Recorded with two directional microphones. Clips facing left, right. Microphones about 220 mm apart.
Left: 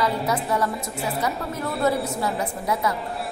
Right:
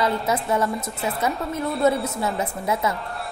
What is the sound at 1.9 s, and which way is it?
Speech, centre (ahead or behind).